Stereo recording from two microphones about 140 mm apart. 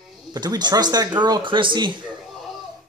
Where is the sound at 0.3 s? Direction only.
30° right (ahead or behind).